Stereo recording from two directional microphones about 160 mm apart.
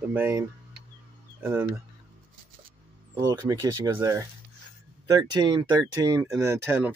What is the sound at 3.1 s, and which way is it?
Speech, 20° right (ahead or behind).